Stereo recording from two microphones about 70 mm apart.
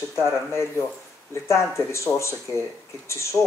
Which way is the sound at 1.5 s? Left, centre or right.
Left.